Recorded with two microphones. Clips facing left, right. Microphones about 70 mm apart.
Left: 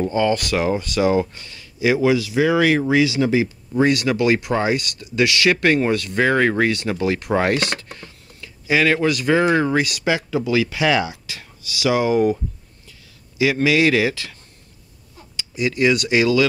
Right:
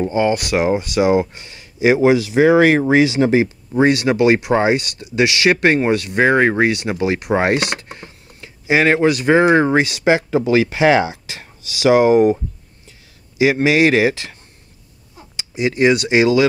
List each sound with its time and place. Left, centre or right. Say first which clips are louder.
0.0 s speech: right 2 dB; right
13.4 s speech: right 3 dB; right